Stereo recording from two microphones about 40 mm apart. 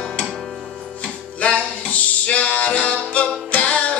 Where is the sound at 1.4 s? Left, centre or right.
Left.